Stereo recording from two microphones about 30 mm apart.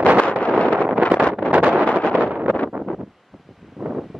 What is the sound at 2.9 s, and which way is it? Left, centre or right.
Wind noise, centre.